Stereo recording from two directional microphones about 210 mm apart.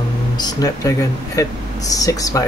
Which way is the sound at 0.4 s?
15° left (ahead or behind).